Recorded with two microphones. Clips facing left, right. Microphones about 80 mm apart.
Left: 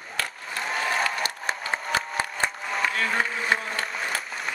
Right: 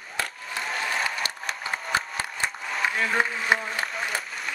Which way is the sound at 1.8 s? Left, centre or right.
Centre.